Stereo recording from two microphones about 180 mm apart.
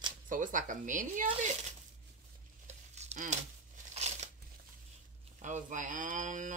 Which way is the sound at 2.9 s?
40° right (ahead or behind).